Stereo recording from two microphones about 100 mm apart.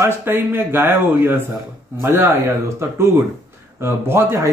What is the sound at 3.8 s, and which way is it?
Speech, 25° right (ahead or behind).